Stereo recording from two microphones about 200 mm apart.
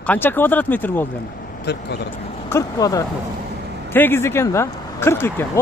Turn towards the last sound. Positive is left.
turn(degrees=10)  # may be behind; listen again after turning